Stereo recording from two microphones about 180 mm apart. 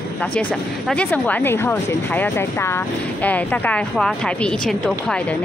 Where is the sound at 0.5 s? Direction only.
Centre (ahead or behind).